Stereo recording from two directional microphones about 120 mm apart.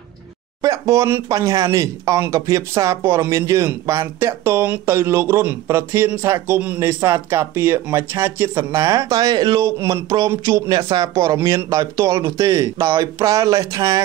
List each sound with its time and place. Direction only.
0.6 s speech: 25° right (ahead or behind)